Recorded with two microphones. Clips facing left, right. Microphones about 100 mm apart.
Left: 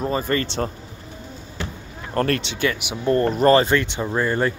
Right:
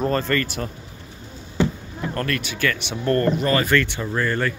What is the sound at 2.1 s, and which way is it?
Speech, 35° left (ahead or behind).